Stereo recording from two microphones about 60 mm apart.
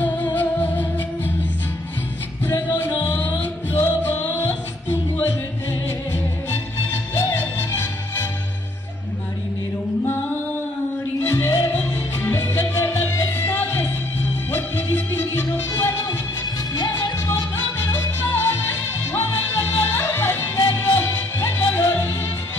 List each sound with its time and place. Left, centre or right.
0.0 s music: left
2.7 s music: left
11.2 s music: left
17.3 s music: left